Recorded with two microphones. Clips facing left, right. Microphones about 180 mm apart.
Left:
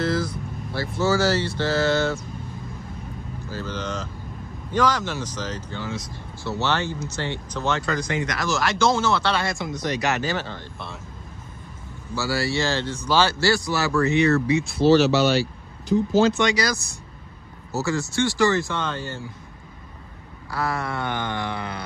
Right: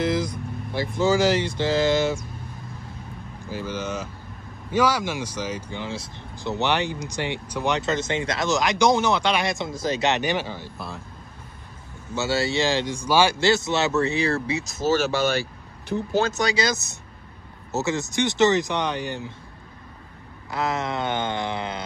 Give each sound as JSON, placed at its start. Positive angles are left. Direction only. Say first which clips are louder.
{"t": 0.0, "sound": "vehicle", "louder": "even", "side_deg": -15}
{"t": 0.7, "sound": "speech", "louder": "right 1 dB", "side_deg": -15}
{"t": 3.4, "sound": "speech", "louder": "right 1 dB", "side_deg": -10}
{"t": 5.9, "sound": "speech", "louder": "left 1 dB", "side_deg": -25}
{"t": 12.2, "sound": "a man's voice", "louder": "right 1 dB", "side_deg": -20}
{"t": 16.3, "sound": "a man's voice", "louder": "left 1 dB", "side_deg": -30}
{"t": 20.5, "sound": "a man's voice", "louder": "right 1 dB", "side_deg": -20}